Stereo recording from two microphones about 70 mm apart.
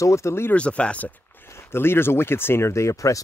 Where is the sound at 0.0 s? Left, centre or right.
Left.